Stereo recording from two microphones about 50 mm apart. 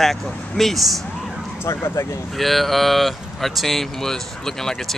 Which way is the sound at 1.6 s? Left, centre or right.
Left.